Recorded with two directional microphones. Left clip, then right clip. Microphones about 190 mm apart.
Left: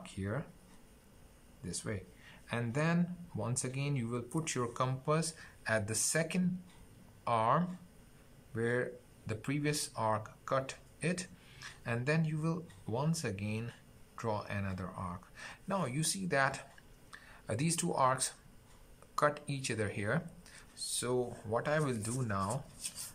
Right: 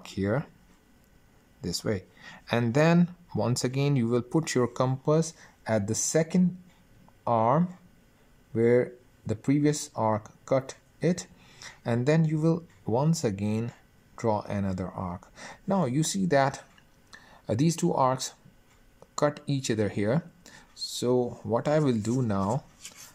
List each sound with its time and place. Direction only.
0.0 s speech: 50° right (ahead or behind)
1.6 s speech: 45° right (ahead or behind)